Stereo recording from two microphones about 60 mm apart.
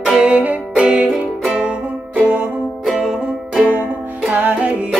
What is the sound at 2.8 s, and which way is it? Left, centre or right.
Music, centre.